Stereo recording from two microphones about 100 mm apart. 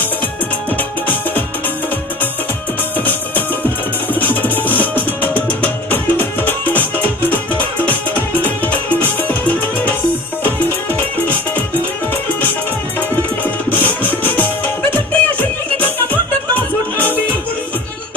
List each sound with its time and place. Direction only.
4.1 s music: 15° left (ahead or behind)
13.4 s music: 15° left (ahead or behind)